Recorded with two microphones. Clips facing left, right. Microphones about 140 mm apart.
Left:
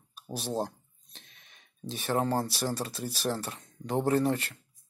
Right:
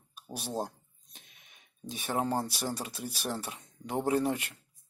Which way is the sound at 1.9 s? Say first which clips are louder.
Left 3 dB; 10° right (ahead or behind).